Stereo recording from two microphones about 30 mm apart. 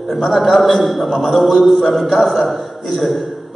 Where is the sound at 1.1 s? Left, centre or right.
Left.